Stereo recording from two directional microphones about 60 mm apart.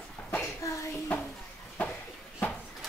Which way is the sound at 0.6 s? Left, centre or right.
Left.